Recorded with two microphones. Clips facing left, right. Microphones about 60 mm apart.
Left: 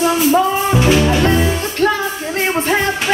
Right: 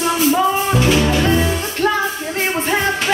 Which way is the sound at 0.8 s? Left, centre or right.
Centre.